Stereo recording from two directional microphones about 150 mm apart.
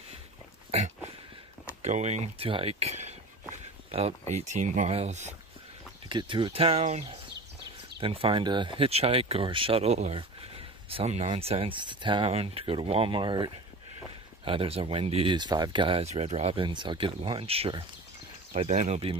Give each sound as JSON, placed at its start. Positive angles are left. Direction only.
{"t": 0.7, "sound": "a sound", "side_deg": -45}
{"t": 1.8, "sound": "speech", "side_deg": -50}
{"t": 4.3, "sound": "speech", "side_deg": -50}
{"t": 6.0, "sound": "speech", "side_deg": -30}
{"t": 8.0, "sound": "speech", "side_deg": -35}
{"t": 15.3, "sound": "speech", "side_deg": -30}
{"t": 16.6, "sound": "speech", "side_deg": -30}
{"t": 18.5, "sound": "speech", "side_deg": -50}